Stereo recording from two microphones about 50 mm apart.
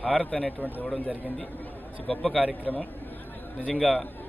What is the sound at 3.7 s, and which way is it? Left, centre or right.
Speech, centre.